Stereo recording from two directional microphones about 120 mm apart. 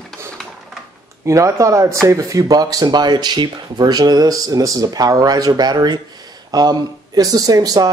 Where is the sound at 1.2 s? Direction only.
25° right (ahead or behind).